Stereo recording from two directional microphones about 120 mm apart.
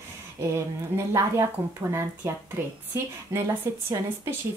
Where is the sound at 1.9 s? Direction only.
20° right (ahead or behind).